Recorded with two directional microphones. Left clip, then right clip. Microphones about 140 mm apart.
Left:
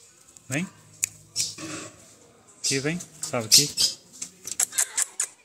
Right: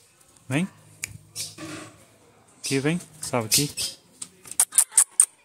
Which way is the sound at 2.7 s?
30° right (ahead or behind).